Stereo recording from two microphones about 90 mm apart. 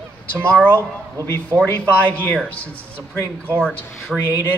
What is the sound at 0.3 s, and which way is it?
Speech, 15° left (ahead or behind).